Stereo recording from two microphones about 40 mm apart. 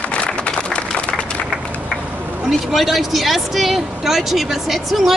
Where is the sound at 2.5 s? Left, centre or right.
Centre.